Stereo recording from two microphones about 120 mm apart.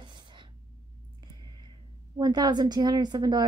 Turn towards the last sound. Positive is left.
turn(degrees=-35)  # may be behind; listen again after turning